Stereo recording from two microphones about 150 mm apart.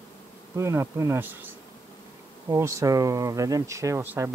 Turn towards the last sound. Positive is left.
turn(degrees=-15)  # may be behind; listen again after turning